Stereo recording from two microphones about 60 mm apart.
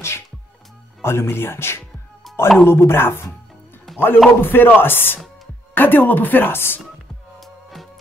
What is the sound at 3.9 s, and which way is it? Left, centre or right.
Music, centre.